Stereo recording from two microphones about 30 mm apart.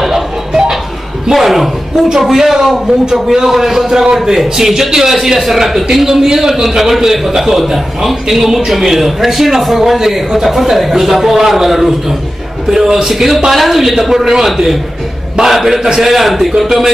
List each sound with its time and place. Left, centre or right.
0.5 s a sound: right
1.3 s a man's voice: centre
6.0 s a man's voice: centre
13.9 s a man's voice: centre